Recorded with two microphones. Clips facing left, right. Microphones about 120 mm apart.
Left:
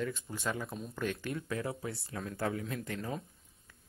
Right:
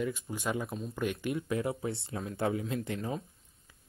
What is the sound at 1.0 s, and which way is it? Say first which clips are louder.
Speech: right 3 dB; 15° right (ahead or behind).